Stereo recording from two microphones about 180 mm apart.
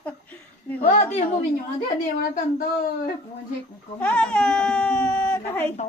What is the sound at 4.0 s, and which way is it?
Speech, 5° left (ahead or behind).